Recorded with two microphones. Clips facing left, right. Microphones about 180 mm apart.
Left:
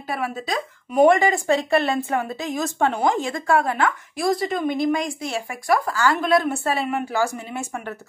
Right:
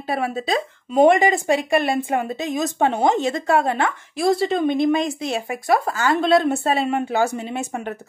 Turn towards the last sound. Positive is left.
turn(degrees=-20)  # may be behind; listen again after turning